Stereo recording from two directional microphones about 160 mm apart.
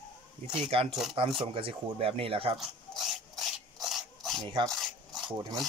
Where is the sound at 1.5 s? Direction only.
35° right (ahead or behind).